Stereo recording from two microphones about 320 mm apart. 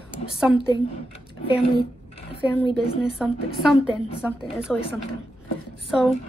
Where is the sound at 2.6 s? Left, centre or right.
Centre.